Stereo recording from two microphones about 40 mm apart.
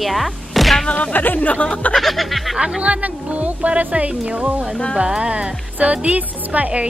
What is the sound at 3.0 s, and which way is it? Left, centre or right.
Speech, right.